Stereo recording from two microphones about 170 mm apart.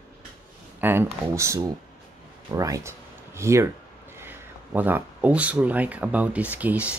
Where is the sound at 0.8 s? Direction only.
15° right (ahead or behind).